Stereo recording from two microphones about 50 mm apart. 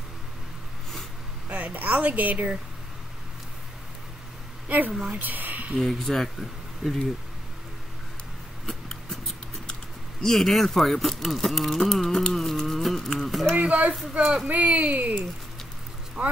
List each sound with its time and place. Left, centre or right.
1.5 s speech: right
4.6 s a woman's voice: right
5.8 s speech: centre
8.6 s a sound: centre
10.2 s speech: centre
12.5 s a sound: centre
13.6 s speech: right
14.2 s speech: centre
14.5 s speech: right